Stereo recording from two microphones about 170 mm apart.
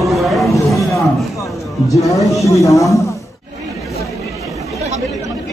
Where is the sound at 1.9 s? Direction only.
20° left (ahead or behind).